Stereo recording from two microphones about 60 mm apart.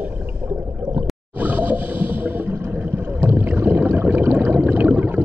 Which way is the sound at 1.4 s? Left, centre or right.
Right.